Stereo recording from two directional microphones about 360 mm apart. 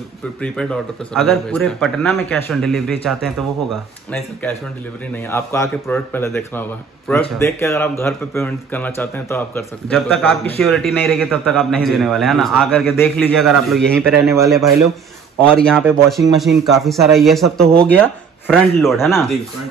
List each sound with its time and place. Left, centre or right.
0.4 s a man's voice: centre
5.1 s a man's voice: centre